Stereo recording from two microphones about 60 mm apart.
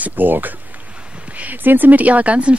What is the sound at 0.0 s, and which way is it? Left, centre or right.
Speech, right.